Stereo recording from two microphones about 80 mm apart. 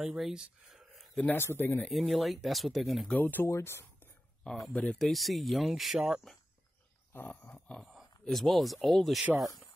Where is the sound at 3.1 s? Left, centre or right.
Left.